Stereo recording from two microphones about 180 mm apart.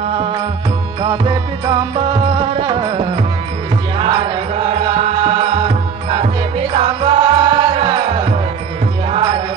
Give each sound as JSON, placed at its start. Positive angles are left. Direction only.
{"t": 1.0, "sound": "music", "side_deg": -25}